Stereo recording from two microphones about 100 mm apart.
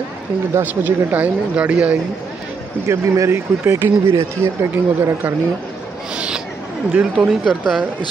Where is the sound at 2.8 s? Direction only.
30° right (ahead or behind).